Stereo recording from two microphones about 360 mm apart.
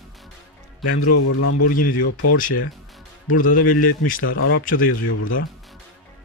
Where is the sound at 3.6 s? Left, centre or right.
Left.